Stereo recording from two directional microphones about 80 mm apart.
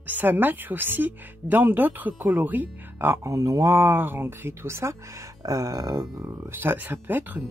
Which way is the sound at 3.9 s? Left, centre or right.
Right.